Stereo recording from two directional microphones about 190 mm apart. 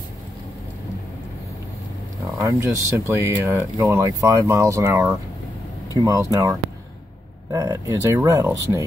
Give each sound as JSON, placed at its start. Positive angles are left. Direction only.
{"t": 2.3, "sound": "speech", "side_deg": -15}